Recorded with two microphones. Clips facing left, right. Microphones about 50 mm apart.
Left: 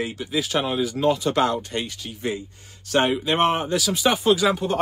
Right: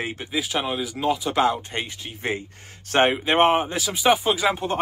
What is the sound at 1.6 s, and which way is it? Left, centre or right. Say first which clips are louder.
Speech: left 2 dB; right.